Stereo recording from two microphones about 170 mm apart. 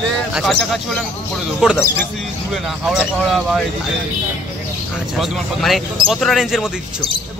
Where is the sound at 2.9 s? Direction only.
Centre (ahead or behind).